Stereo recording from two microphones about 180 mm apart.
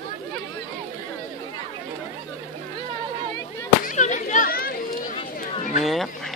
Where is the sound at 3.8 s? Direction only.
45° left (ahead or behind).